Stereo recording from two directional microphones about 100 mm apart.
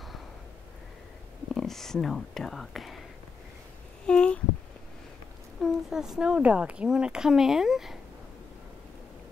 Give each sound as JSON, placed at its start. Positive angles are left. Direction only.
{"t": 1.5, "sound": "speech", "side_deg": 5}
{"t": 4.0, "sound": "a sound", "side_deg": 10}
{"t": 5.6, "sound": "speech", "side_deg": -5}